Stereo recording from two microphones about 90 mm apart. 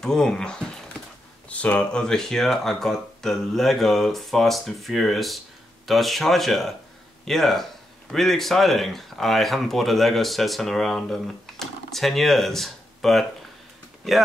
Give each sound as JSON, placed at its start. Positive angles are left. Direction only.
{"t": 0.0, "sound": "speech", "side_deg": 5}